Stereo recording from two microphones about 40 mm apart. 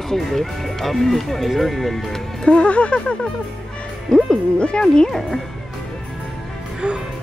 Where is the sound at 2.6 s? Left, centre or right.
Left.